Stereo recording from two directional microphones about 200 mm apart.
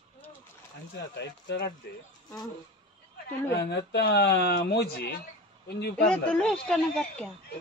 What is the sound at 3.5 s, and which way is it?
Speech, 60° left (ahead or behind).